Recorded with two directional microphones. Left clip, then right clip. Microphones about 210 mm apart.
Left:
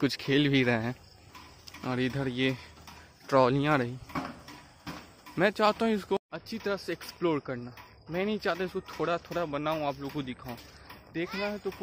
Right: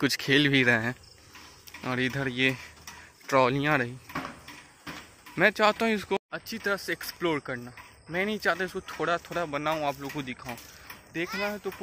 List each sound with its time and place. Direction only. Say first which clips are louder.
0.0 s speech: right 4 dB; centre (ahead or behind)
4.9 s a sound: right 2 dB; 50° left (ahead or behind)
5.3 s speech: right 3 dB; centre (ahead or behind)
11.2 s speech: right 3 dB; 5° left (ahead or behind)